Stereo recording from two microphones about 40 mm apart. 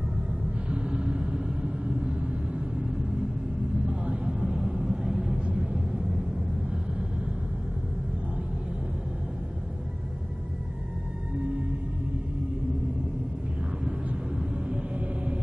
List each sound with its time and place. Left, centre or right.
0.7 s vehicle: right
4.1 s vehicle: centre
14.4 s rumble: centre